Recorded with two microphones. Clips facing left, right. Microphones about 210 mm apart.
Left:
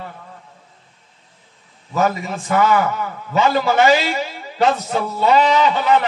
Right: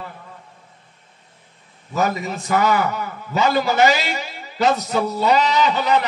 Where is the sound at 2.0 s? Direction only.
40° right (ahead or behind).